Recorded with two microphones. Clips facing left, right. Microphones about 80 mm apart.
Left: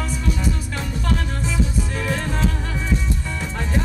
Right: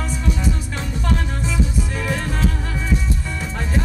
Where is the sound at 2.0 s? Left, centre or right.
Centre.